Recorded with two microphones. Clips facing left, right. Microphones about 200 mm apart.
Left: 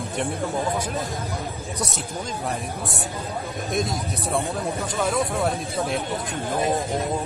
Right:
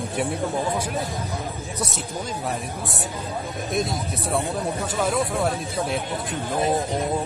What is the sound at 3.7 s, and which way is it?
Speech, centre (ahead or behind).